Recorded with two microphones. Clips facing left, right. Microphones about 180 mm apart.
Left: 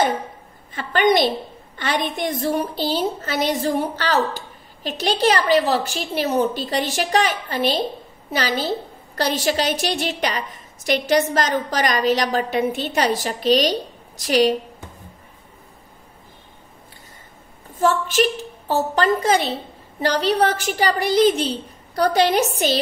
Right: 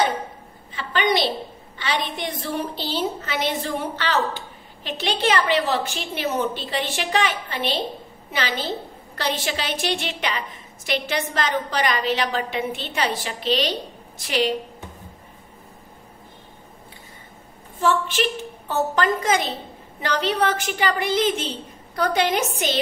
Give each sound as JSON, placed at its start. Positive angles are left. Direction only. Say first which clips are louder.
{"t": 0.7, "sound": "a woman's voice", "louder": "left 5 dB", "side_deg": 45}
{"t": 17.7, "sound": "a woman's voice", "louder": "left 3 dB", "side_deg": 40}